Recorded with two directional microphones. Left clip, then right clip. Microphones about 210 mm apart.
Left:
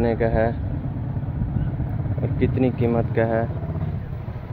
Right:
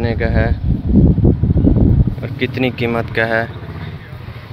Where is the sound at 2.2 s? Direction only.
10° right (ahead or behind).